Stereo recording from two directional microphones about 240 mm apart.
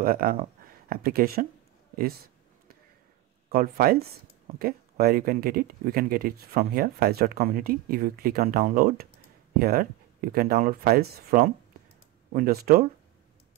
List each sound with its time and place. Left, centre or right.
0.0 s speech: right
3.4 s speech: right